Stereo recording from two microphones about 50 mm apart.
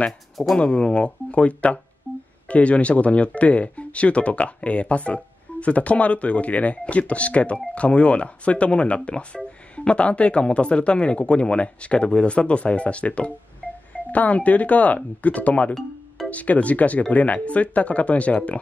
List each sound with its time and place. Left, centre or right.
0.6 s speech: left
13.6 s wind chime: left
13.9 s speech: left